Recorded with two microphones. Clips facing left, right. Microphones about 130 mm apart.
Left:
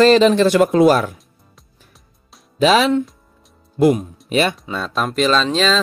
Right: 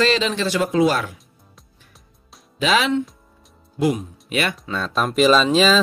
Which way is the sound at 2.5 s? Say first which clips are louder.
Left 5 dB; 40° left (ahead or behind).